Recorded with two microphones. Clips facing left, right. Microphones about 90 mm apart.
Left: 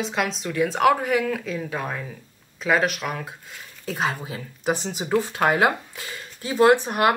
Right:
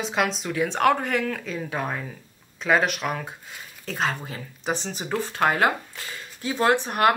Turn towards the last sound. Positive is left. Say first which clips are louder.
# even
turn(degrees=15)  # may be behind; listen again after turning